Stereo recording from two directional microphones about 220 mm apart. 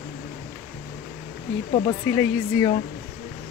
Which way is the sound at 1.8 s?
15° left (ahead or behind).